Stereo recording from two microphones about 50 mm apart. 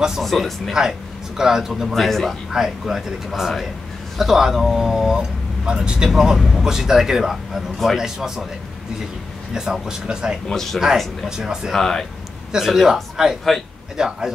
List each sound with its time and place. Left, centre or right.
0.2 s speech: centre
9.5 s speech: centre
10.5 s speech: centre
11.2 s speech: centre
11.7 s speech: centre
12.5 s speech: centre